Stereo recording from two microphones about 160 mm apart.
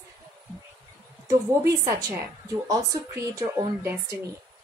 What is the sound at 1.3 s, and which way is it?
A woman's voice, 25° right (ahead or behind).